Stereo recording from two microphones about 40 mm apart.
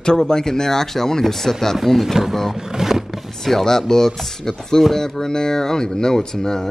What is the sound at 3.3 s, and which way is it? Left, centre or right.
Speech, centre.